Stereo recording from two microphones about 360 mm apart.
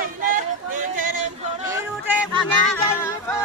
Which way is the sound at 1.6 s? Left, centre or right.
Centre.